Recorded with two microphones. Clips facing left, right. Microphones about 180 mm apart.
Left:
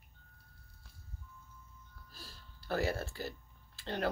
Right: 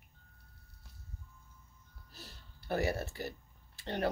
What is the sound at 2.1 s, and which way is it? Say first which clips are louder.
Music: right 2 dB; 20° right (ahead or behind).